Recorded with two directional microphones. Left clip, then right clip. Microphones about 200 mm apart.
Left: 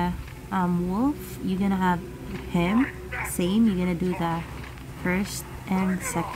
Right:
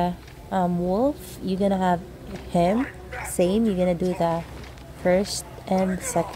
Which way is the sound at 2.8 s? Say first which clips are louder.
Left 2 dB; centre (ahead or behind).